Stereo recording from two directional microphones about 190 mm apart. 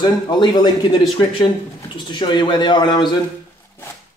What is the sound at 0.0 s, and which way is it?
Speech, 20° left (ahead or behind).